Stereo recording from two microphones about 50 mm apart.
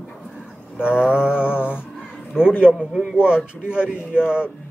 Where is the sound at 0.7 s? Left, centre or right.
Centre.